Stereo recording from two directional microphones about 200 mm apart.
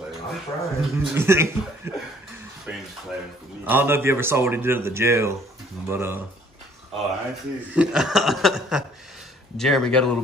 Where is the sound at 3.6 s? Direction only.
10° right (ahead or behind).